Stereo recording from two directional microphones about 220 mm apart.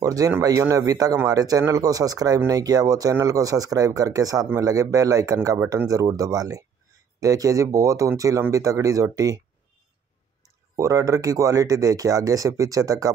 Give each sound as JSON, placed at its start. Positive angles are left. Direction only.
{"t": 0.0, "sound": "a man's voice", "side_deg": -15}
{"t": 10.8, "sound": "a man's voice", "side_deg": -15}